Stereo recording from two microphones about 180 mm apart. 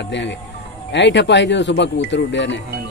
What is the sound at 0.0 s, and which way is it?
A man's voice, 80° left.